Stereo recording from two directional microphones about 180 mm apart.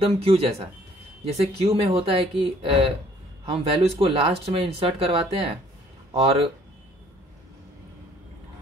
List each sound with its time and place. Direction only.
0.0 s speech: 35° right (ahead or behind)